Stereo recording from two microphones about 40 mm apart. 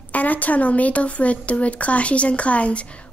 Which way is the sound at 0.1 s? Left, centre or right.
Left.